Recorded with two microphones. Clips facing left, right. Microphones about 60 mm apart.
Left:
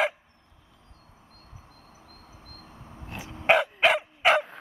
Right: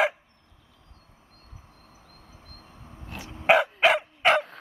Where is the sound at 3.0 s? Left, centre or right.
Centre.